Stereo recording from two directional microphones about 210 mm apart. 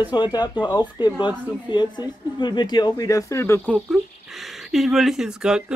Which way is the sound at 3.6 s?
5° right (ahead or behind).